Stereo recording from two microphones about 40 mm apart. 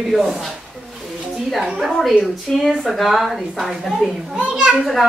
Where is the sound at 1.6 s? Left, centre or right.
Centre.